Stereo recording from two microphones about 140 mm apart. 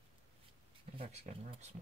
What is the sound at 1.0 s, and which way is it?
Speech, 50° right (ahead or behind).